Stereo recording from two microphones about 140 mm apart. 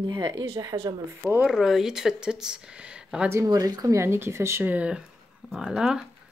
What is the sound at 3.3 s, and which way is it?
Speech, 25° right (ahead or behind).